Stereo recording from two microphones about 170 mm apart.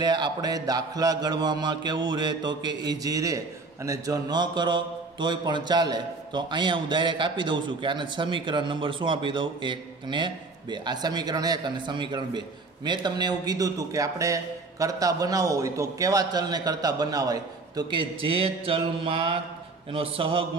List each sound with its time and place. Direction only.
0.0 s a man's voice: 25° right (ahead or behind)